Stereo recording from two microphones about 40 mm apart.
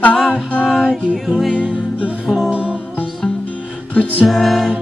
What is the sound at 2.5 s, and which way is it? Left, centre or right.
Music, right.